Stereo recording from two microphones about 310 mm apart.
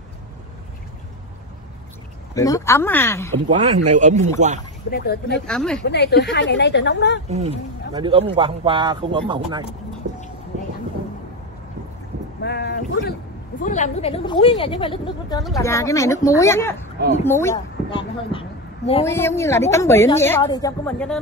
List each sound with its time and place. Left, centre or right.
2.3 s a woman's voice: centre
3.4 s a man's voice: centre
4.9 s speech: left
5.5 s speech: centre
5.9 s speech: left
7.2 s a man's voice: right
12.4 s boat: left
13.6 s a woman's voice: left; by 21.2 s centre